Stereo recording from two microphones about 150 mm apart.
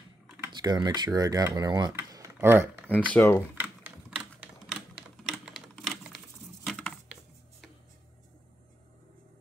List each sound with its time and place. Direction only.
0.5 s speech: 30° right (ahead or behind)
2.0 s a sound: 15° right (ahead or behind)
2.9 s speech: 10° left (ahead or behind)
3.5 s typewriter: 10° right (ahead or behind)